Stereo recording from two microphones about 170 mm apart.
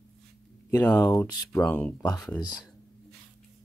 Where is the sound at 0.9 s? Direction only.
20° left (ahead or behind).